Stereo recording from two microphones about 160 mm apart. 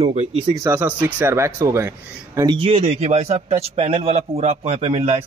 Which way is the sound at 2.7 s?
40° right (ahead or behind).